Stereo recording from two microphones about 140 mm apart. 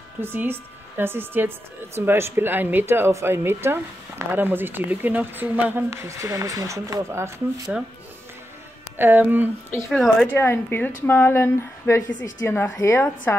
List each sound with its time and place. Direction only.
0.2 s speech: 15° right (ahead or behind)
8.9 s speech: 15° right (ahead or behind)
9.8 s speech: centre (ahead or behind)
10.2 s a woman's voice: 15° left (ahead or behind)